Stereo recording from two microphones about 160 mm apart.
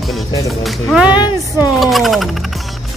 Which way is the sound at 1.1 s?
25° left (ahead or behind).